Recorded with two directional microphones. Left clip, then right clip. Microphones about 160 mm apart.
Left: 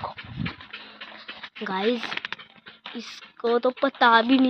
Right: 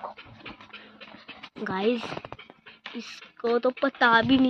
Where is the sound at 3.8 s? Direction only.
20° right (ahead or behind).